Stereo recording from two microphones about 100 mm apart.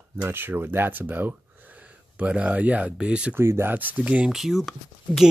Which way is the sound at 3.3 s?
25° right (ahead or behind).